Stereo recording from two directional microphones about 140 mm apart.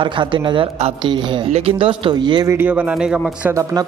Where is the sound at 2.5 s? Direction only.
15° right (ahead or behind).